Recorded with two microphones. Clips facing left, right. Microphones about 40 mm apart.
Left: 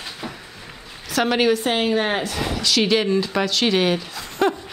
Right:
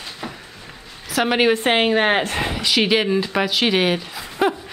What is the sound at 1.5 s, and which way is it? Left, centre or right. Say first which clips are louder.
Speech: right 3 dB; right.